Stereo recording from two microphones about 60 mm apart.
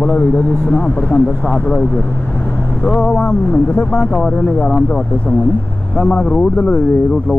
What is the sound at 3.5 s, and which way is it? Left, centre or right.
Speech, left.